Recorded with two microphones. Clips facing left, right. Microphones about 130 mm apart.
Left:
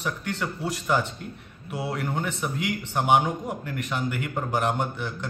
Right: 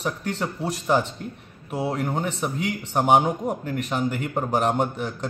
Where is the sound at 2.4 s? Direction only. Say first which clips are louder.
Right 2 dB; 40° right (ahead or behind).